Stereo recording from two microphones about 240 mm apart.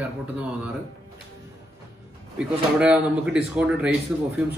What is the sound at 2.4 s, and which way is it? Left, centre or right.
Speech, centre.